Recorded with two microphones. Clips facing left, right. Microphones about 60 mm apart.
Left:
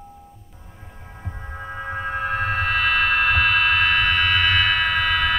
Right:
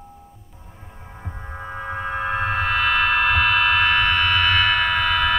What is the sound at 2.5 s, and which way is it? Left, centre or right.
Music, left.